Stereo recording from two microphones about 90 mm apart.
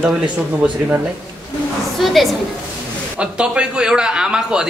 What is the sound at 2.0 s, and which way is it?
Speech, centre (ahead or behind).